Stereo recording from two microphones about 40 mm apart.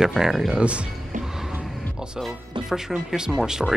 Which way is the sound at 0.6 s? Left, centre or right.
Right.